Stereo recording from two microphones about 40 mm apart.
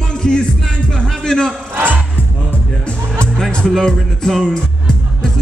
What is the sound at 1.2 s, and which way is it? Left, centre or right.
Speech, centre.